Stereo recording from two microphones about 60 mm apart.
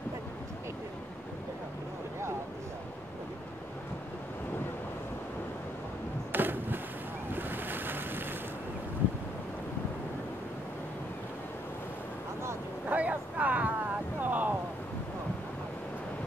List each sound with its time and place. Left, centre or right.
6.3 s skateboard: right
7.3 s waves: right
12.8 s vehicle: right
14.2 s a sound: right